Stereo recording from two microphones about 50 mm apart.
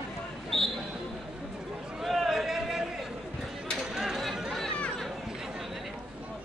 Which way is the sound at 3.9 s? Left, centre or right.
Centre.